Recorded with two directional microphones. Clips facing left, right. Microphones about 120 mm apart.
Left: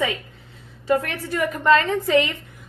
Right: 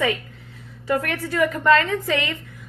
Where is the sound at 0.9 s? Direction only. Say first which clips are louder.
Left 1 dB; 20° left (ahead or behind).